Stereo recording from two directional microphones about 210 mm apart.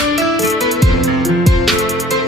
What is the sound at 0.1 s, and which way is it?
Music, centre (ahead or behind).